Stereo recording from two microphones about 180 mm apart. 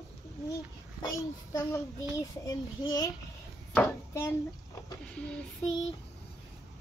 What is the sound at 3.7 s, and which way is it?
Speech, 10° left (ahead or behind).